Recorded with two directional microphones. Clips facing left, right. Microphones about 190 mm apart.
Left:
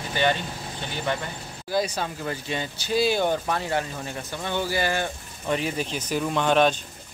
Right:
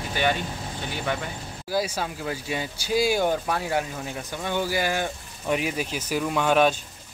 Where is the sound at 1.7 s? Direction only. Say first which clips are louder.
Left 1 dB; 5° right (ahead or behind).